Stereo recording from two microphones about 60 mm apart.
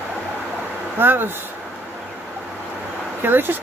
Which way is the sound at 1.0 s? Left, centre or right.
Right.